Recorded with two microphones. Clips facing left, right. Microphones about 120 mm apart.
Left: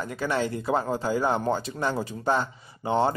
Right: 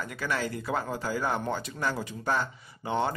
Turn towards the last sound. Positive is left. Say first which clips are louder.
# left 5 dB
turn(degrees=30)  # may be behind; listen again after turning